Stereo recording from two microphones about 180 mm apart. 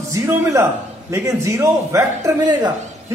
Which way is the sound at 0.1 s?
15° right (ahead or behind).